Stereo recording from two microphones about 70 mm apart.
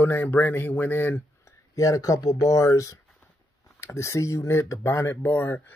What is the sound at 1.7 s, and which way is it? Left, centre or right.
Speech, left.